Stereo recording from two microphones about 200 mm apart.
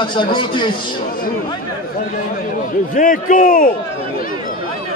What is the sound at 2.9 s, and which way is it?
Speech, 40° left (ahead or behind).